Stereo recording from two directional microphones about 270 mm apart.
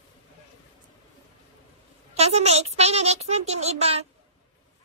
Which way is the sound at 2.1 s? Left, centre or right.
Right.